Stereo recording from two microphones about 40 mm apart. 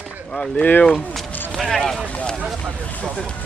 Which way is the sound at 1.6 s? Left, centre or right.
Centre.